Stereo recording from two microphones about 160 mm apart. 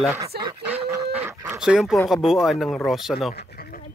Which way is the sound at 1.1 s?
10° right (ahead or behind).